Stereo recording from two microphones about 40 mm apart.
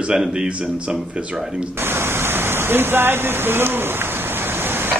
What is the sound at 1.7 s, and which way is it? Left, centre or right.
Waterfall, right.